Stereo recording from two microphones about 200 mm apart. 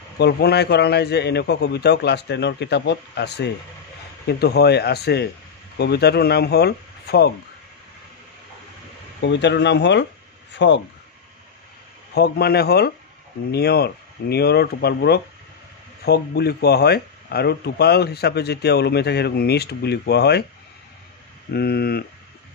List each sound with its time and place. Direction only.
0.2 s a man's voice: 55° left (ahead or behind)
9.2 s a man's voice: 60° left (ahead or behind)
12.1 s speech: 55° left (ahead or behind)
21.5 s speech: 50° left (ahead or behind)